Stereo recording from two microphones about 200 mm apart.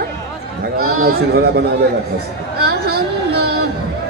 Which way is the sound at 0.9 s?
50° right (ahead or behind).